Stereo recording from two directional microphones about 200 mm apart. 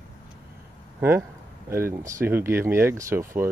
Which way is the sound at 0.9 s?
10° right (ahead or behind).